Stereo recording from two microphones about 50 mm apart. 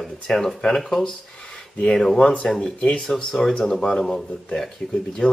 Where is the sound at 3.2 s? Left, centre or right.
Centre.